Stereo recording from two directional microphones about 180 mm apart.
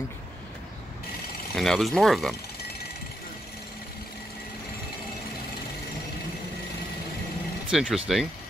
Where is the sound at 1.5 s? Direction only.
Centre (ahead or behind).